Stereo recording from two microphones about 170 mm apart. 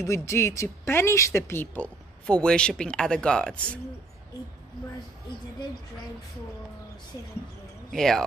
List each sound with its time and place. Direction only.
0.0 s speech: 15° left (ahead or behind)
7.9 s speech: 5° left (ahead or behind)